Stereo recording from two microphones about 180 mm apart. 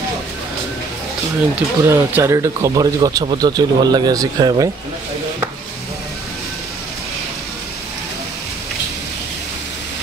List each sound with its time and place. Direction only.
1.5 s speech: 10° right (ahead or behind)